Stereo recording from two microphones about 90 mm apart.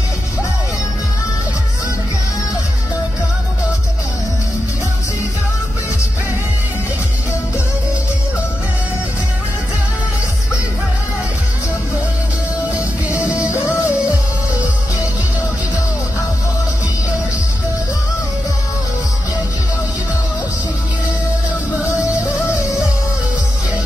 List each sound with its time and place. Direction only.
13.5 s music: 35° left (ahead or behind)